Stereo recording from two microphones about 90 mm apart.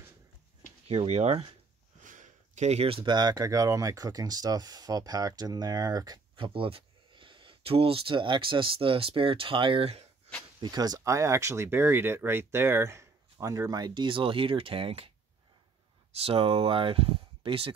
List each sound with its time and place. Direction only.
2.8 s speech: 80° right; by 6.2 s 45° right (ahead or behind)
6.3 s speech: 75° right (ahead or behind)
10.6 s speech: 50° right (ahead or behind)
11.1 s speech: 35° right (ahead or behind); by 15.1 s 90° right
16.2 s speech: 90° right